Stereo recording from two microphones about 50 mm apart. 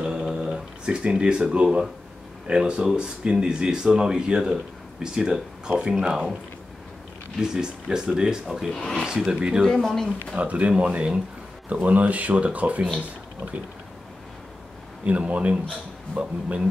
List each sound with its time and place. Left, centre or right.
0.0 s a sound: centre
2.4 s speech: centre
7.3 s speech: centre
8.7 s speech: centre
9.0 s speech: centre
9.7 s speech: centre
10.3 s speech: right
15.0 s speech: right